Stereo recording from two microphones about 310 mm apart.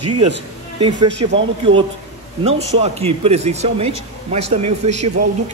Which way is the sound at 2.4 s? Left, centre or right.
Centre.